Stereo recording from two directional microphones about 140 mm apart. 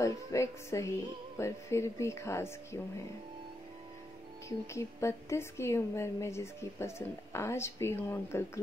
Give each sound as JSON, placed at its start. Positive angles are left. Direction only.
{"t": 0.0, "sound": "a woman's voice", "side_deg": 20}
{"t": 4.5, "sound": "a woman's voice", "side_deg": 20}